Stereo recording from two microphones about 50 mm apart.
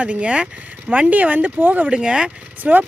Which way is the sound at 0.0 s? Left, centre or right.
Right.